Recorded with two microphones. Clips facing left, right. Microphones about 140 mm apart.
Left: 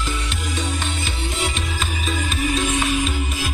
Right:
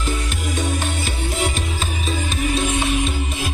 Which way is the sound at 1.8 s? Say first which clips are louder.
Right 1 dB; 30° right (ahead or behind).